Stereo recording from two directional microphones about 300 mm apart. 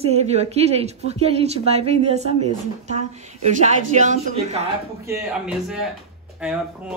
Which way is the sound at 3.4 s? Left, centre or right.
Right.